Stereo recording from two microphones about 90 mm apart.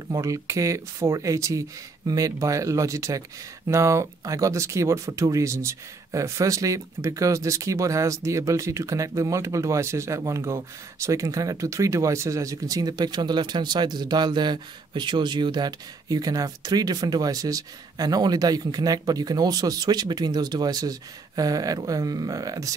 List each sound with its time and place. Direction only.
0.1 s speech: 35° right (ahead or behind)